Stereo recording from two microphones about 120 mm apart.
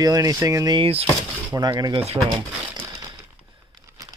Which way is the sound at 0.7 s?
50° right (ahead or behind).